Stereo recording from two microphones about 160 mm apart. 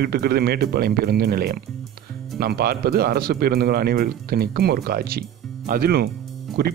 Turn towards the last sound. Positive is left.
turn(degrees=-80)